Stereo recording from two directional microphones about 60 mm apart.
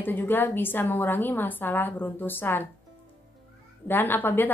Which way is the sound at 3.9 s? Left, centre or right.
Left.